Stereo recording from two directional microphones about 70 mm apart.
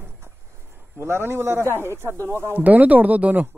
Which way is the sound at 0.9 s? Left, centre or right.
Right.